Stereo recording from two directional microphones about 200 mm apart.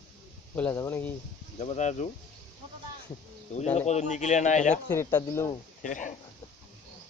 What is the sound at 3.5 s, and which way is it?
Speech, 35° left (ahead or behind).